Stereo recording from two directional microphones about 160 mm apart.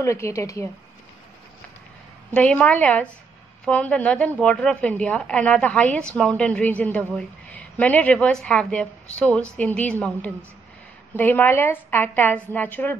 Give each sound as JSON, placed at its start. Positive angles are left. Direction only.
{"t": 0.0, "sound": "speech", "side_deg": 20}
{"t": 2.3, "sound": "a woman's voice", "side_deg": 10}